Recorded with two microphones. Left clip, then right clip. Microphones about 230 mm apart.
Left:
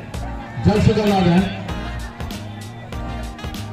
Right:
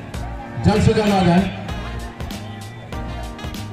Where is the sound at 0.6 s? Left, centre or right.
Right.